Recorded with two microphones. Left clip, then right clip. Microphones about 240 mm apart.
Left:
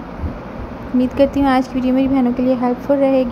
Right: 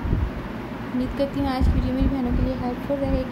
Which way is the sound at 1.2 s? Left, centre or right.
Left.